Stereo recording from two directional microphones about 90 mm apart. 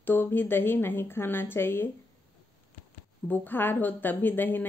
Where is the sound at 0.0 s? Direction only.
25° left (ahead or behind).